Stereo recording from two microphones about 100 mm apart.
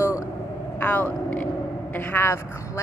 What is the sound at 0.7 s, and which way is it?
A woman's voice, 15° left (ahead or behind).